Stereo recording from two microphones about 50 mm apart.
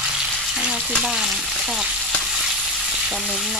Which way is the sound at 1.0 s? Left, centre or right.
Centre.